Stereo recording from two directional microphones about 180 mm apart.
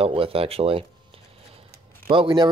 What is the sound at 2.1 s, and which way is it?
Speech, 25° right (ahead or behind).